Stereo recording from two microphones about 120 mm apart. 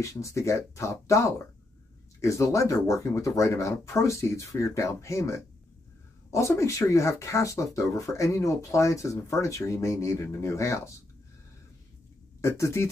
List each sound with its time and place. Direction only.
0.0 s speech: 25° left (ahead or behind)
12.4 s speech: 25° left (ahead or behind)